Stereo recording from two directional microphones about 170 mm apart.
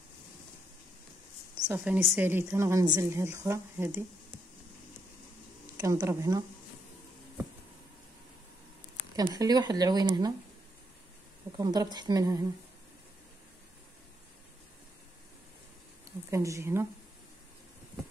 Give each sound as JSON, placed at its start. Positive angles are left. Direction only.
{"t": 1.7, "sound": "a woman's voice", "side_deg": -15}
{"t": 5.8, "sound": "speech", "side_deg": -20}
{"t": 9.1, "sound": "speech", "side_deg": -20}
{"t": 11.5, "sound": "speech", "side_deg": -25}
{"t": 16.3, "sound": "a woman's voice", "side_deg": -15}